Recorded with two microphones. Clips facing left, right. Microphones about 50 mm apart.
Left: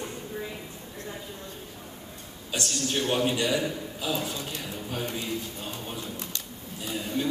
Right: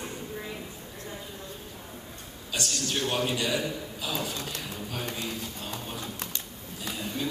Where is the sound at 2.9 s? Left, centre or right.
Centre.